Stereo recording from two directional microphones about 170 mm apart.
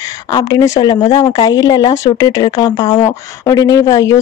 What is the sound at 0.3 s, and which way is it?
A woman's voice, 25° left (ahead or behind).